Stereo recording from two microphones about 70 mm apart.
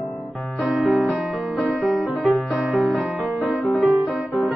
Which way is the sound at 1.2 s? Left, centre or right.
Centre.